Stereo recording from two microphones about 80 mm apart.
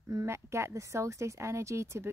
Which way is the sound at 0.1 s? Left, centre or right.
Right.